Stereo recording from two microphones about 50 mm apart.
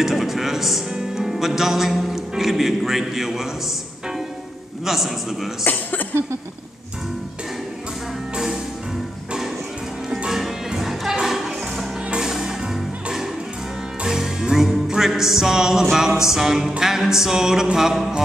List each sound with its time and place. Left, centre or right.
0.0 s speech: centre
4.8 s a man's voice: centre
5.7 s a sound: left
10.0 s music: centre
14.0 s music: centre